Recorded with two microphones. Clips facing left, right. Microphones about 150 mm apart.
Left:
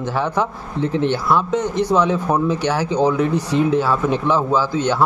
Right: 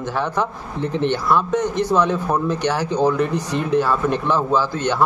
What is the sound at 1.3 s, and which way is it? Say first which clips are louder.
Speech: even; 10° left (ahead or behind).